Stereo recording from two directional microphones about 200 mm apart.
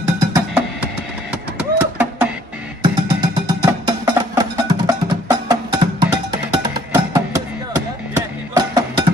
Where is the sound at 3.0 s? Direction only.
20° right (ahead or behind).